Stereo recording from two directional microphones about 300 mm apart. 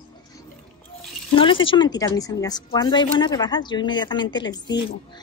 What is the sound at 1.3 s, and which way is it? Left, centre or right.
Speech, centre.